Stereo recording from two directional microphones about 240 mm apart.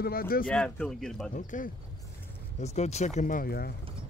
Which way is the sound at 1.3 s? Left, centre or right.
Left.